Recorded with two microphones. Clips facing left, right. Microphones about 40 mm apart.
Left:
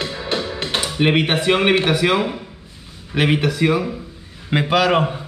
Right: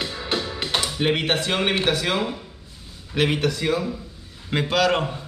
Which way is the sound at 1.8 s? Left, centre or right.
Centre.